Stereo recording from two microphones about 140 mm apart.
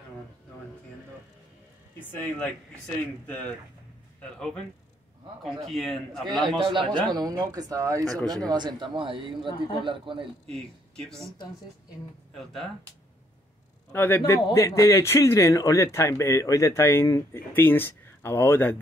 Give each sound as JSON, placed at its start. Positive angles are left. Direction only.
{"t": 2.1, "sound": "a man's voice", "side_deg": 10}
{"t": 6.2, "sound": "a man's voice", "side_deg": -30}
{"t": 10.4, "sound": "a man's voice", "side_deg": 5}
{"t": 13.9, "sound": "a man's voice", "side_deg": 15}